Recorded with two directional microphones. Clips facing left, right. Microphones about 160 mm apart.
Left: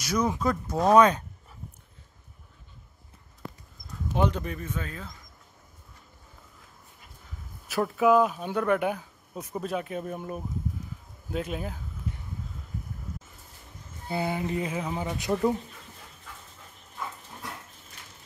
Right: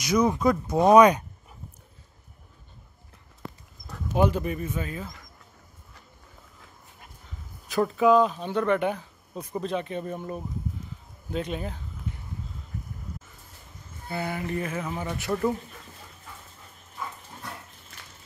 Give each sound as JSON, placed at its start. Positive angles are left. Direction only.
{"t": 0.0, "sound": "speech", "side_deg": -10}
{"t": 4.1, "sound": "speech", "side_deg": -10}
{"t": 7.6, "sound": "speech", "side_deg": 5}
{"t": 14.0, "sound": "speech", "side_deg": 15}